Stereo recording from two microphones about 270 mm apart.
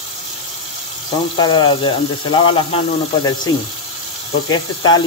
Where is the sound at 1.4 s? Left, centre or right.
Centre.